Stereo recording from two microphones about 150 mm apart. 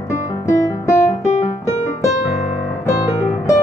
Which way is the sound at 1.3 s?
50° left (ahead or behind).